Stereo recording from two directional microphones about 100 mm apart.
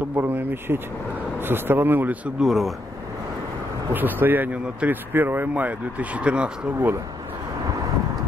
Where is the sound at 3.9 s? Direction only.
20° right (ahead or behind).